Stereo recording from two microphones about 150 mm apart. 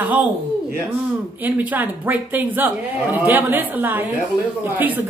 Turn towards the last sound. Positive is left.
turn(degrees=-10)  # may be behind; listen again after turning